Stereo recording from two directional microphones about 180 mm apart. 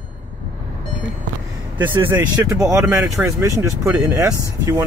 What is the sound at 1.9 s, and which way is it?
Speech, 10° right (ahead or behind).